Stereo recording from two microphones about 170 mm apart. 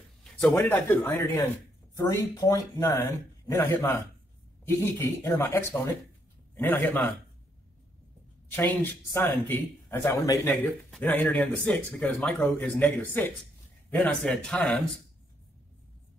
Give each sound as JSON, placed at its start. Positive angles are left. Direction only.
{"t": 0.2, "sound": "speech", "side_deg": 10}
{"t": 8.5, "sound": "speech", "side_deg": 10}